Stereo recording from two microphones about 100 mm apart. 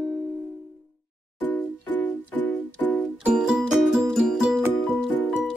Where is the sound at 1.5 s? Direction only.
20° left (ahead or behind).